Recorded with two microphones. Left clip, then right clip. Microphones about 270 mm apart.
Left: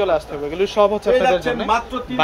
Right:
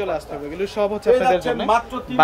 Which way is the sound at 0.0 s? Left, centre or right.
Centre.